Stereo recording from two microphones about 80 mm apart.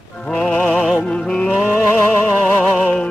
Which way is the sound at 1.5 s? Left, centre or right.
Centre.